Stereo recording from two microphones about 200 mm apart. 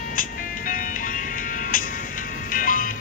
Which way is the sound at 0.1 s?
45° left (ahead or behind).